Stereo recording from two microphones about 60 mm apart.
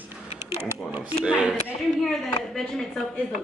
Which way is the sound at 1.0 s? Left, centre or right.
Centre.